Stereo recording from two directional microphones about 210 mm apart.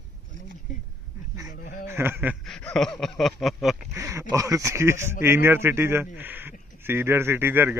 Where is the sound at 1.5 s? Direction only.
40° left (ahead or behind).